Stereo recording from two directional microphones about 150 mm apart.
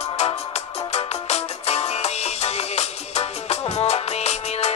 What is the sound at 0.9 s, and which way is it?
Music, 45° left (ahead or behind).